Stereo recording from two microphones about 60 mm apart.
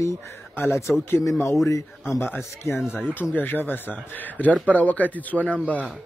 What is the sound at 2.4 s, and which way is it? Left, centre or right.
Speech, left.